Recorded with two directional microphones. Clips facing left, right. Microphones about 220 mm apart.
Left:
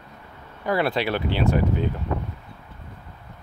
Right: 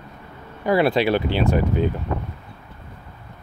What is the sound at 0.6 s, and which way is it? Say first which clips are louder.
Speech: right 5 dB; 15° right (ahead or behind).